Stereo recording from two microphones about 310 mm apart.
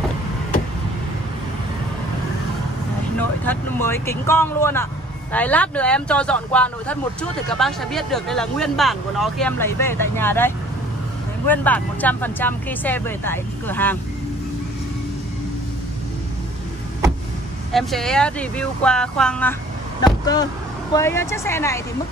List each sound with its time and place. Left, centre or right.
3.2 s speech: centre
17.7 s speech: centre
20.0 s vehicle: centre
20.9 s speech: centre